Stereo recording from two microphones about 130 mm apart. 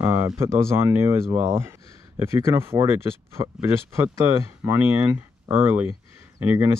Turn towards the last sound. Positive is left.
turn(degrees=-20)  # may be behind; listen again after turning